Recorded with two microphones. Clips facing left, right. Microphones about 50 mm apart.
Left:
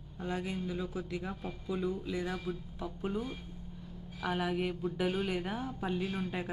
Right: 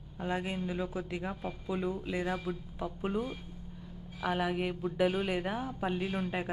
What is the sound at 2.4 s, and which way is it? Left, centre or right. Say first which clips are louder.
A woman's voice: right 2 dB; centre.